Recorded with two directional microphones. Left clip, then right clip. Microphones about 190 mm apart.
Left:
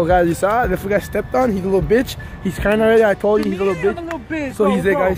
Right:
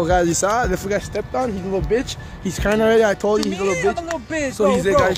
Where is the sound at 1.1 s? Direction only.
50° left (ahead or behind).